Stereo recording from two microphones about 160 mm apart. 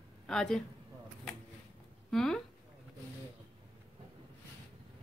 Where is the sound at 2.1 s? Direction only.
5° left (ahead or behind).